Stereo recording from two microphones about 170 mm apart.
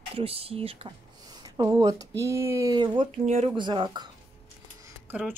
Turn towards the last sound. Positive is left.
turn(degrees=-10)  # may be behind; listen again after turning